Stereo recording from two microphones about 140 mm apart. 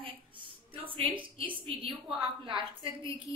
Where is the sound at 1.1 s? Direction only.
35° right (ahead or behind).